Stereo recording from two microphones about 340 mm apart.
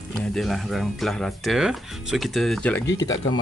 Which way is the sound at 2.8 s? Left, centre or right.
Left.